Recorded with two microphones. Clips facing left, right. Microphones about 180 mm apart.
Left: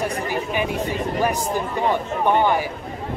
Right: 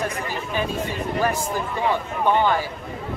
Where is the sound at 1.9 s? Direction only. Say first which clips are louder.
Left 1 dB; 15° left (ahead or behind).